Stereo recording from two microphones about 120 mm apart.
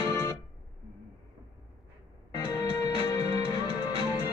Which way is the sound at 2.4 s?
30° left (ahead or behind).